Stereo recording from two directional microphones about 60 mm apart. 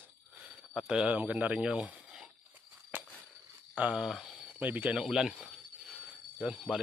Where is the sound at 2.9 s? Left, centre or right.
Right.